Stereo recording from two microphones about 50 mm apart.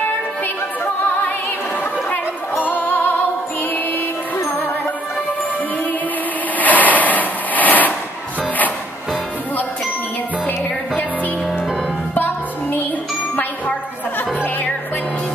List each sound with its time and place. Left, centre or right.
2.0 s music: left
6.6 s a sound: left
14.1 s music: left